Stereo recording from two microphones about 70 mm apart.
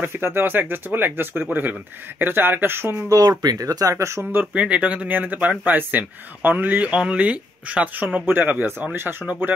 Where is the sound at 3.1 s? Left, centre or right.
Right.